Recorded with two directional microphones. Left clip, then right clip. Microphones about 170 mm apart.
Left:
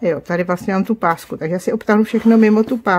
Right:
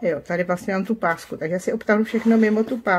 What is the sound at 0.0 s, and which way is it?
Speech, 35° left (ahead or behind).